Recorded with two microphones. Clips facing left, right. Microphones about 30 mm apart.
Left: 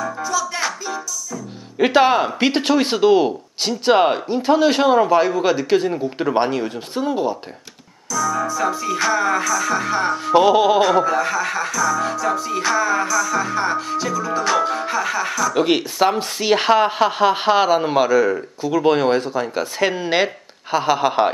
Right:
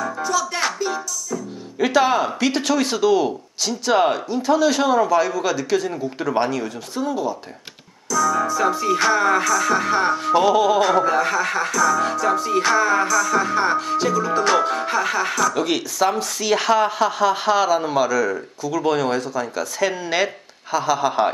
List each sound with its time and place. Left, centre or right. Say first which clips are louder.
0.0 s music: even; centre
1.8 s a man's voice: left 3 dB; left
8.1 s music: right 2 dB; centre
10.3 s speech: left 3 dB; left
10.8 s speech: left 2 dB; centre
11.1 s music: even; centre
15.5 s speech: left 4 dB; left